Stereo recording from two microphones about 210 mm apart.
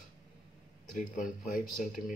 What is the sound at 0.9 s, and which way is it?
Speech, 35° left (ahead or behind).